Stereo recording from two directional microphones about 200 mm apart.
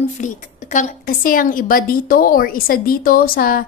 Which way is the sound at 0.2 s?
40° left (ahead or behind).